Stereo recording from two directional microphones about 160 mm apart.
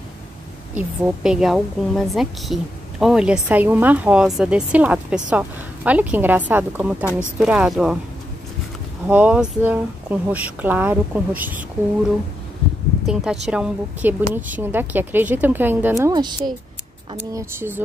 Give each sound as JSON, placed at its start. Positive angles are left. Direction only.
{"t": 0.7, "sound": "a woman's voice", "side_deg": -5}
{"t": 9.0, "sound": "a woman's voice", "side_deg": -10}
{"t": 13.0, "sound": "a woman's voice", "side_deg": -5}
{"t": 16.0, "sound": "a woman's voice", "side_deg": -25}